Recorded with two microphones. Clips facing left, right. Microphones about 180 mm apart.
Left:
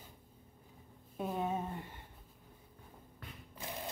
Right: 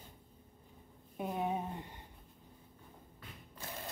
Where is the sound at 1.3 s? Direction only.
15° right (ahead or behind).